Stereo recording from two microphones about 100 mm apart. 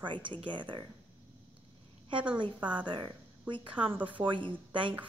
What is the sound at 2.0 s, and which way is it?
A woman's voice, 55° right (ahead or behind).